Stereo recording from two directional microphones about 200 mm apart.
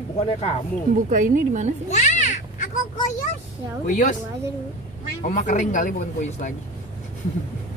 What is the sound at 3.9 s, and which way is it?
Speech, 35° left (ahead or behind).